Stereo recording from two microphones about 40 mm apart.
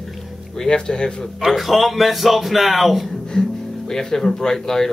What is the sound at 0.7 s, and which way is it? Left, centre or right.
Speech, centre.